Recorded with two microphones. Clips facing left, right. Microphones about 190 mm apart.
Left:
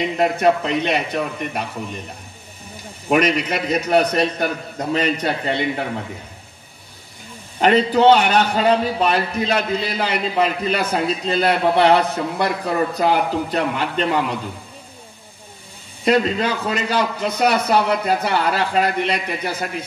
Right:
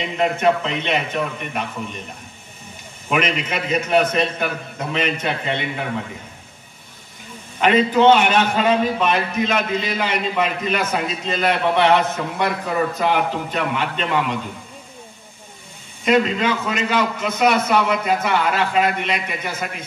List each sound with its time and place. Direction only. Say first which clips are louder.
0.2 s a man's voice: even; 35° left (ahead or behind)
3.1 s a man's voice: left 4 dB; 35° left (ahead or behind)
7.6 s a man's voice: left 1 dB; 35° left (ahead or behind)
16.0 s a man's voice: even; 35° left (ahead or behind)